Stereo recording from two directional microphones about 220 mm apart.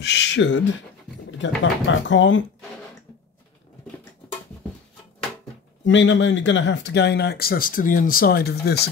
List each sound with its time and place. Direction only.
0.0 s speech: 50° left (ahead or behind)
1.6 s speech: 55° left (ahead or behind)
5.9 s speech: 55° left (ahead or behind)